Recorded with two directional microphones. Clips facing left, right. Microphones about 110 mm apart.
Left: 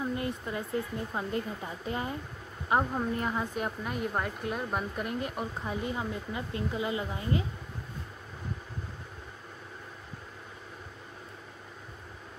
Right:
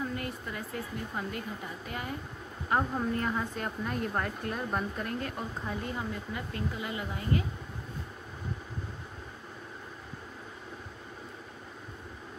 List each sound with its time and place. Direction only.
0.0 s a sound: 20° left (ahead or behind)
1.1 s speech: 25° left (ahead or behind)
2.7 s speech: 15° left (ahead or behind)